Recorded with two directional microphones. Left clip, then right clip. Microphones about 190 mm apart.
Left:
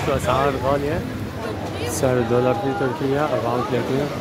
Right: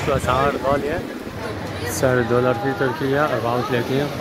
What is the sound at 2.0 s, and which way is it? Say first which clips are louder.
Speech: right 1 dB; 5° right (ahead or behind).